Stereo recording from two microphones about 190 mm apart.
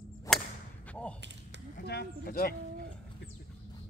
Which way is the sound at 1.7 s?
60° left (ahead or behind).